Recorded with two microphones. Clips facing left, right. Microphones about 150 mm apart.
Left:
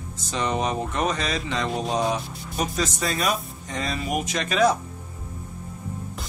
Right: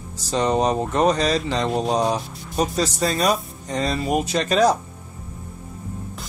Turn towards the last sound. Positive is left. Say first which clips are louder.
# right 3 dB
turn(degrees=-35)  # may be behind; listen again after turning